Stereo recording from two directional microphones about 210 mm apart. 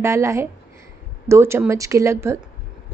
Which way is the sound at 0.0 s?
15° right (ahead or behind).